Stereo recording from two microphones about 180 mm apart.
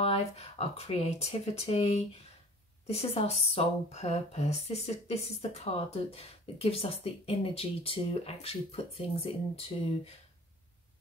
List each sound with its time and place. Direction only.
0.0 s speech: 35° left (ahead or behind)